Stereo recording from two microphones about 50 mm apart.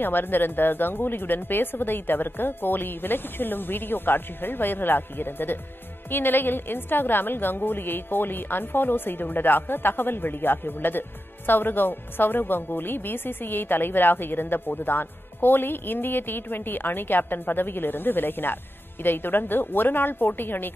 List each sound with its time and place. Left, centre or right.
0.0 s a woman's voice: left